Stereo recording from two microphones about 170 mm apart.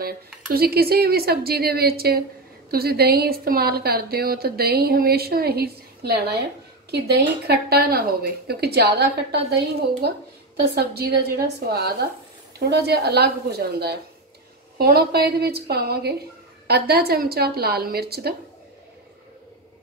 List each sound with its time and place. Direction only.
0.5 s a woman's voice: 65° right (ahead or behind)
10.7 s a woman's voice: 70° right (ahead or behind)